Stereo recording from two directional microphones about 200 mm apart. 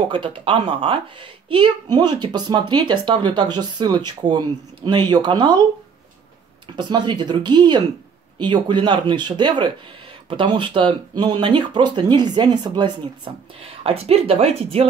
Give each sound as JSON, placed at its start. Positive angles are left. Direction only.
{"t": 0.5, "sound": "speech", "side_deg": -25}
{"t": 6.7, "sound": "speech", "side_deg": -20}